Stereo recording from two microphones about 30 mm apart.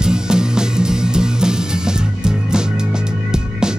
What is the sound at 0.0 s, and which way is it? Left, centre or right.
Music, right.